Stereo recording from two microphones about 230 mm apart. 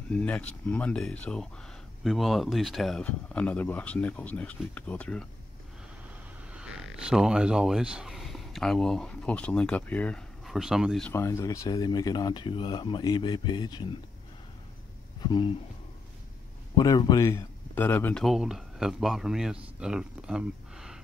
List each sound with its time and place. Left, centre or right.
0.1 s speech: centre
6.5 s speech: centre
15.2 s speech: centre
16.7 s speech: centre